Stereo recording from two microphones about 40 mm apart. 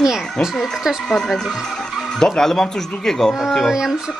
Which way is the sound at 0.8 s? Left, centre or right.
Centre.